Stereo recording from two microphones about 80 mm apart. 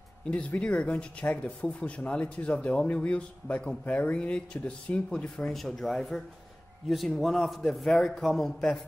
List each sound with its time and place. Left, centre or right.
0.2 s speech: centre
5.5 s a man's voice: centre